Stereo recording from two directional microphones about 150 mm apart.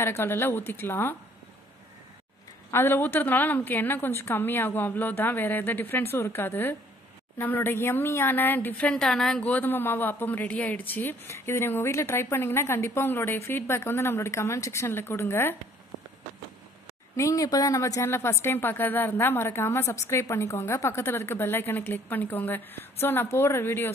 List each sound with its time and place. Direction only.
0.0 s speech: 15° left (ahead or behind)
2.7 s speech: 15° left (ahead or behind)
17.2 s speech: 25° left (ahead or behind)